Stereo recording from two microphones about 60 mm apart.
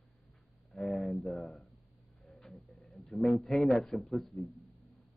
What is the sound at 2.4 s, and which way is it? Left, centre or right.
Speech, centre.